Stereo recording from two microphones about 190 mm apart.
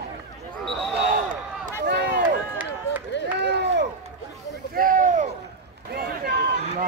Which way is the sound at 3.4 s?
65° right (ahead or behind).